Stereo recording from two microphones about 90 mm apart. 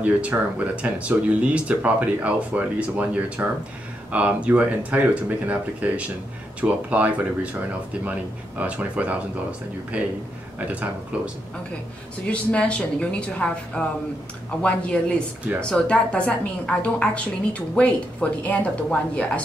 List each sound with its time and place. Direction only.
0.0 s speech: 15° right (ahead or behind)
12.3 s a woman's voice: 15° left (ahead or behind)